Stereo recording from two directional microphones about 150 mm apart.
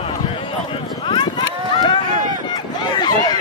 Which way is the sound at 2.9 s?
30° left (ahead or behind).